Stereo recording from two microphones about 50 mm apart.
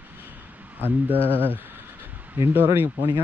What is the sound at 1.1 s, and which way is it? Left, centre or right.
Speech, left.